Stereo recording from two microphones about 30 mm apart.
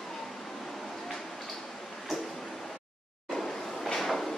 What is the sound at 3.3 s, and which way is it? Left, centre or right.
Vehicle, centre.